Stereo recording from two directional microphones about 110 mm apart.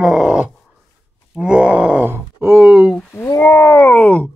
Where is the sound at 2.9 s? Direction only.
15° left (ahead or behind).